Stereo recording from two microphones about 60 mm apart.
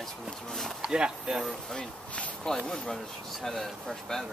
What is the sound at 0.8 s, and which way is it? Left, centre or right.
Speech, centre.